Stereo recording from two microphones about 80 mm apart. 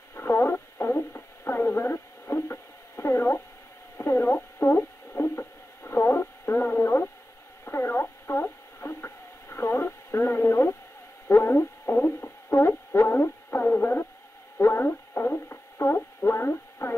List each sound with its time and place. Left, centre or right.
0.1 s radio: left
11.2 s a sound: left
14.6 s radio: left